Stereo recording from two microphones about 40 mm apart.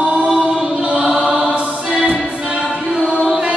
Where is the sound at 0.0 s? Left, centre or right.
Right.